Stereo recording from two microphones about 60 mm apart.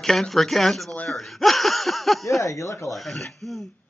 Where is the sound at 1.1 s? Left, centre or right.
Centre.